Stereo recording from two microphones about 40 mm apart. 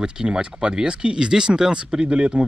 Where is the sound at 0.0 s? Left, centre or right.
Right.